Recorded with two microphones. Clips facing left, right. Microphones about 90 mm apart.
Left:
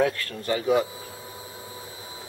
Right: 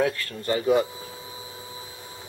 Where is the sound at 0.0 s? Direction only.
5° right (ahead or behind).